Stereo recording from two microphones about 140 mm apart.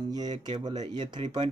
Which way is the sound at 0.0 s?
30° right (ahead or behind).